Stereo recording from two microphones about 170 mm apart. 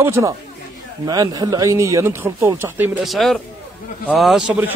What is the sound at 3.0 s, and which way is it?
Speech, centre (ahead or behind).